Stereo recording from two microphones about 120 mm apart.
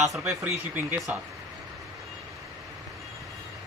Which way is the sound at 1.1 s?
15° right (ahead or behind).